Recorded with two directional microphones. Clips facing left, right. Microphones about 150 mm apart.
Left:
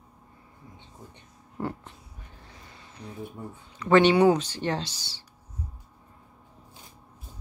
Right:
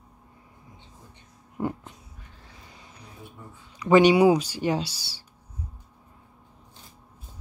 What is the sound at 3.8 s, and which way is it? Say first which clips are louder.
Speech: right 2 dB; 10° right (ahead or behind).